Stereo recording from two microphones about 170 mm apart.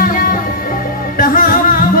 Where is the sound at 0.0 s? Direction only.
55° left (ahead or behind).